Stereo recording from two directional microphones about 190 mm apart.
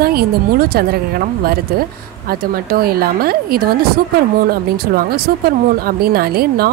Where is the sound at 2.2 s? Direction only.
50° right (ahead or behind).